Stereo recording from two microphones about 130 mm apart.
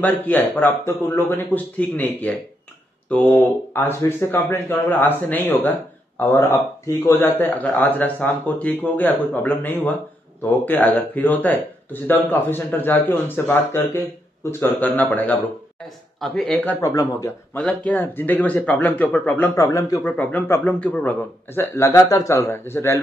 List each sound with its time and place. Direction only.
0.0 s speech: 15° left (ahead or behind)
16.2 s speech: centre (ahead or behind)
16.8 s speech: 25° left (ahead or behind)
17.6 s speech: 10° left (ahead or behind)
19.5 s speech: 25° left (ahead or behind)
20.0 s speech: 15° left (ahead or behind)